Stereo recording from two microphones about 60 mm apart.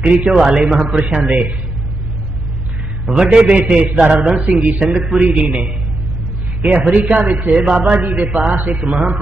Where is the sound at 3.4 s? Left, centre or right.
Right.